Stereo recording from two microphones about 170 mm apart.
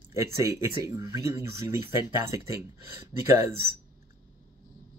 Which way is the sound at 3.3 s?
15° right (ahead or behind).